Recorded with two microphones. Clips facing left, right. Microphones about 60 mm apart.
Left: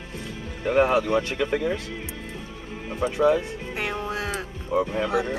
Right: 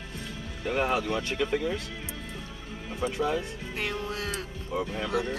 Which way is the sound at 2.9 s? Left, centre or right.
Left.